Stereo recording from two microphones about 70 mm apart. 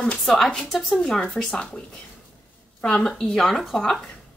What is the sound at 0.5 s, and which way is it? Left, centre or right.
A woman's voice, centre.